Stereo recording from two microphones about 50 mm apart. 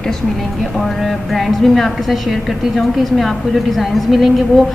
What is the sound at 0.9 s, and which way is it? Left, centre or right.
A woman's voice, centre.